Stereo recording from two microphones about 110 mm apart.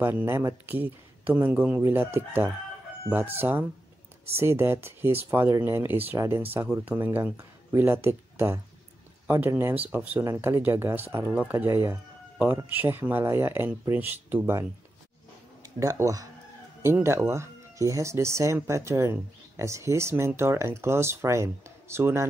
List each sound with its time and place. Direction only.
0.0 s speech: 20° right (ahead or behind)
15.6 s speech: 30° right (ahead or behind)